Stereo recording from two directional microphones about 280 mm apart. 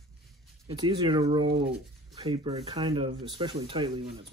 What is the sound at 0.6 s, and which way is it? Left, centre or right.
Speech, centre.